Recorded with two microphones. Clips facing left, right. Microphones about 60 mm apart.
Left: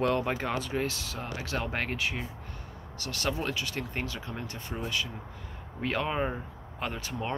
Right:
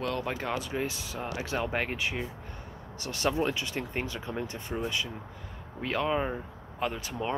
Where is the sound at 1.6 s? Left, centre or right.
Centre.